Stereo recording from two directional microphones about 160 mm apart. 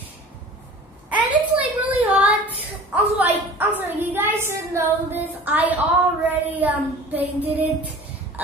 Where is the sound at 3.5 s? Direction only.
15° right (ahead or behind).